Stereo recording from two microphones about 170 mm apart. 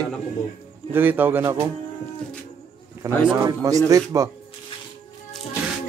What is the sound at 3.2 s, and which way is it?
Speech, 25° right (ahead or behind).